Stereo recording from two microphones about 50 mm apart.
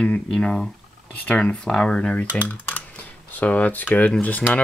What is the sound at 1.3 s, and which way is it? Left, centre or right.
Speech, left.